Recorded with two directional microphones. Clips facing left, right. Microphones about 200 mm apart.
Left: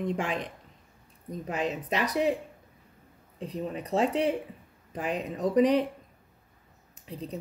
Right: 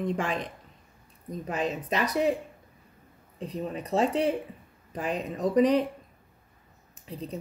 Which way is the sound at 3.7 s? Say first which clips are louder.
Right 1 dB; 15° left (ahead or behind).